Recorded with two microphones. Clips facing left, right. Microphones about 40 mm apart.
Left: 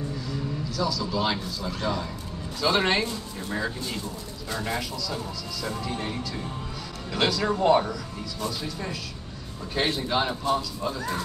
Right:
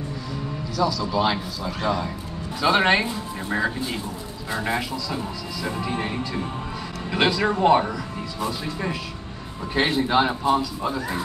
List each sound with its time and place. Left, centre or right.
0.7 s a man's voice: centre